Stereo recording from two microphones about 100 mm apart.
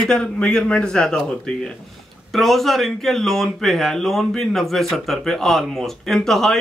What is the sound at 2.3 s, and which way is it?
Speech, centre (ahead or behind).